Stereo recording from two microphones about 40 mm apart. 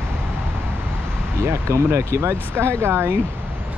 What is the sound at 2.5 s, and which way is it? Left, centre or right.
Speech, right.